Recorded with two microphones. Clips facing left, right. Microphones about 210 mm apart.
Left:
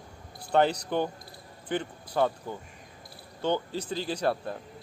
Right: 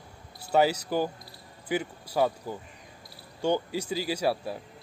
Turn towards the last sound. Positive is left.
turn(degrees=-5)  # may be behind; listen again after turning